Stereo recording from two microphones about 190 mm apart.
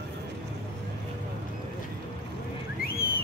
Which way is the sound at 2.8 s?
50° left (ahead or behind).